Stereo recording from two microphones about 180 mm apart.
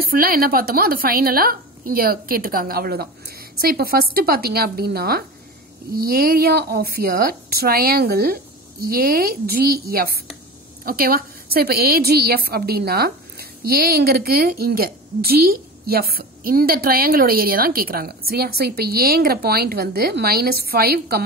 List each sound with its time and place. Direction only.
0.0 s a woman's voice: 55° right (ahead or behind)